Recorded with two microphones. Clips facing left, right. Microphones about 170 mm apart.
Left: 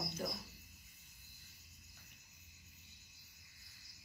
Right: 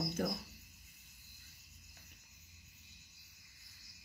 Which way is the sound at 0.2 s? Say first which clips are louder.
Right 6 dB; 55° right (ahead or behind).